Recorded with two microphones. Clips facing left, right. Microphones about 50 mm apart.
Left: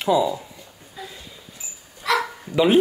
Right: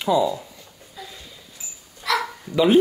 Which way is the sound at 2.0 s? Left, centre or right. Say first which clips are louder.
Left 1 dB; left.